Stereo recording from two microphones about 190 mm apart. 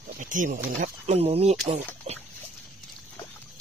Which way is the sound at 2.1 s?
35° right (ahead or behind).